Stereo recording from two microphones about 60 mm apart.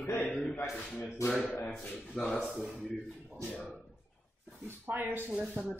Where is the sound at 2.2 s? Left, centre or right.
Centre.